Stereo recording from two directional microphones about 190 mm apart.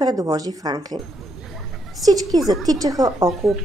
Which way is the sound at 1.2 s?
Centre (ahead or behind).